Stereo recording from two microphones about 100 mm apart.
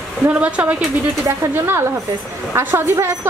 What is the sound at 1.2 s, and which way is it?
A woman's voice, 30° right (ahead or behind).